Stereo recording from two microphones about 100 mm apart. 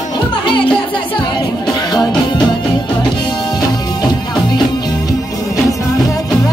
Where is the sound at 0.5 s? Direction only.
55° left (ahead or behind).